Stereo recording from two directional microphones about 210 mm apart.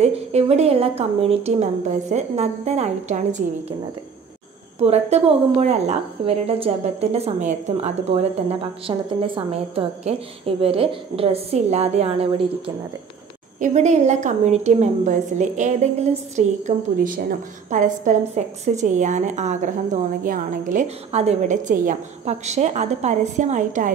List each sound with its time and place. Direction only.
0.0 s a woman's voice: 30° right (ahead or behind)
4.7 s a woman's voice: 30° right (ahead or behind)